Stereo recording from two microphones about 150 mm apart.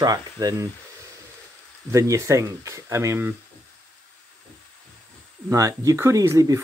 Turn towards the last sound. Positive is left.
turn(degrees=-20)  # may be behind; listen again after turning